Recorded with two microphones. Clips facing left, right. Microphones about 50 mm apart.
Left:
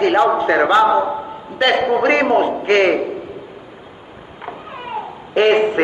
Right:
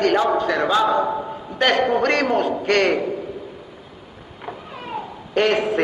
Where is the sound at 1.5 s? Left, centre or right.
Centre.